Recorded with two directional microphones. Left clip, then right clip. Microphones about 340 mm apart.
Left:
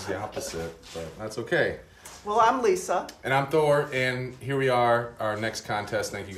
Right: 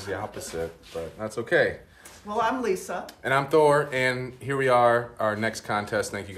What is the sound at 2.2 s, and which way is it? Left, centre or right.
Speech, centre.